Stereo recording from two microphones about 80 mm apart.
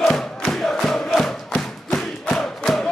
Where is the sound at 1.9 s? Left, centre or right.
Centre.